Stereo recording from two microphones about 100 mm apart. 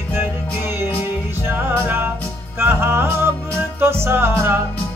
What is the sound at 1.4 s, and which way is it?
Music, 20° right (ahead or behind).